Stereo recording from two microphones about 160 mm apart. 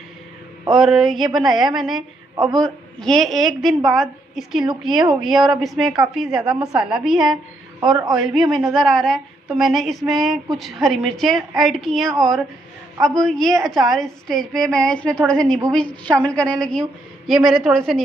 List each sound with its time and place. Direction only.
0.7 s a woman's voice: centre (ahead or behind)
1.4 s a woman's voice: 25° right (ahead or behind)
1.7 s a woman's voice: centre (ahead or behind)
2.3 s a man's voice: 25° right (ahead or behind)
2.6 s a woman's voice: 5° left (ahead or behind)